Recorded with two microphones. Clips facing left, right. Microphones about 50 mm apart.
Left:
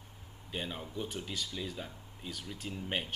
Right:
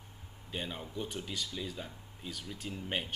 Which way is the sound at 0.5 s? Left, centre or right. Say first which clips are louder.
Even; centre.